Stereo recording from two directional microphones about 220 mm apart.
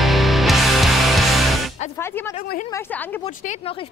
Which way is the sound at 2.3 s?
40° left (ahead or behind).